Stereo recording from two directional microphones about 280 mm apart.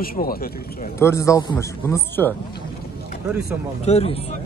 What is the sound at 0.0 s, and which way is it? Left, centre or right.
Speech, left.